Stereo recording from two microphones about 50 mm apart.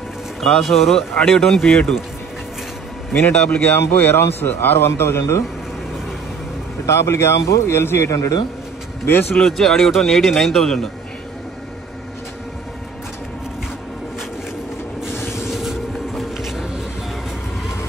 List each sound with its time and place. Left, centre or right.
0.4 s speech: centre
3.1 s a man's voice: left
3.7 s a man's voice: left
6.9 s speech: left
9.0 s a man's voice: left
9.3 s speech: centre
15.2 s vehicle: centre